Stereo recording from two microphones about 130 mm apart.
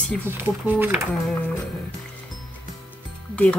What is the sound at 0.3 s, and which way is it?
Speech, 15° right (ahead or behind).